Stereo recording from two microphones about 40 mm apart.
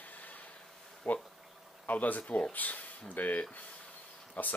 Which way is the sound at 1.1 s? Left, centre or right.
Left.